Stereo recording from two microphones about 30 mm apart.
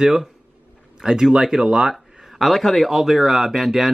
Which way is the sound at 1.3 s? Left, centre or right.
Right.